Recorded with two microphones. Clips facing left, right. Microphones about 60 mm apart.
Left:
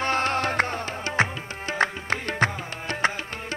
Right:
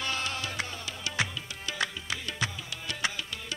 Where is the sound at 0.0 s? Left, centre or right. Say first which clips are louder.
Left 10 dB; left.